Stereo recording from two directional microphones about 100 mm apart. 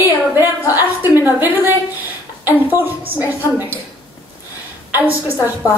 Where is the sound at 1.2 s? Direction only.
20° right (ahead or behind).